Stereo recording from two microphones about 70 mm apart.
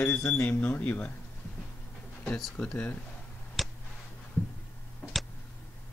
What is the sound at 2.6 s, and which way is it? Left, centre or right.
Speech, centre.